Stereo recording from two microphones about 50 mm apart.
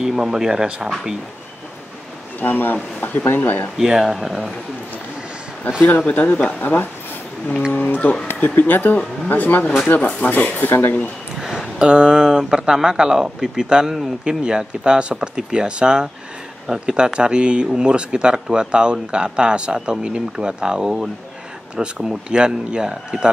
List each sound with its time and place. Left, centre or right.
0.0 s speech: centre
2.4 s speech: left
3.7 s speech: centre
5.9 s speech: left
6.6 s speech: left
11.4 s speech: centre